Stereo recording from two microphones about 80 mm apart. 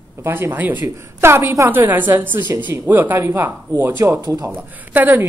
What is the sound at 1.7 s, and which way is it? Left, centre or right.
A woman's voice, right.